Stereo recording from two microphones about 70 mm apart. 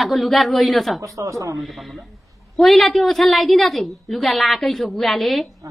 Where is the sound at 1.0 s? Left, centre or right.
Right.